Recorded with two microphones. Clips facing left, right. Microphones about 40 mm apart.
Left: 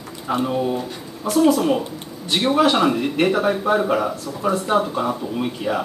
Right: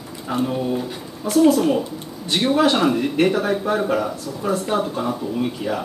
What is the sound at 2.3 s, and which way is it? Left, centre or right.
Speech, centre.